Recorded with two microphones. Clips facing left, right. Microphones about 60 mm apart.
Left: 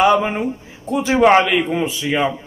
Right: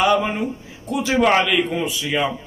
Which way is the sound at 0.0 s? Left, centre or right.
Left.